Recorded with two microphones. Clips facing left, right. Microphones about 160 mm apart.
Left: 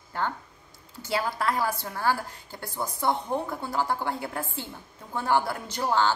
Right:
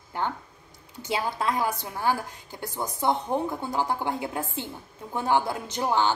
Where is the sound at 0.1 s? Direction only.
20° right (ahead or behind).